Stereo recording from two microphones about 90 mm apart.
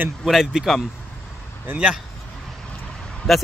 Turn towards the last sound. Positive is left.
turn(degrees=0)  # may be behind; listen again after turning